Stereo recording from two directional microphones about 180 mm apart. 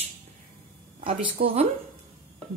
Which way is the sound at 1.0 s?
30° right (ahead or behind).